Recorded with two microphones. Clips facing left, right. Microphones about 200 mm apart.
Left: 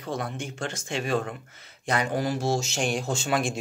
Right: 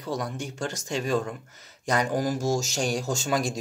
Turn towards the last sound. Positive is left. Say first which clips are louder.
# even
turn(degrees=-40)  # may be behind; listen again after turning